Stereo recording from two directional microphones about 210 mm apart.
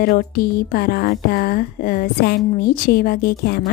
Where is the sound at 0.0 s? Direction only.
45° left (ahead or behind).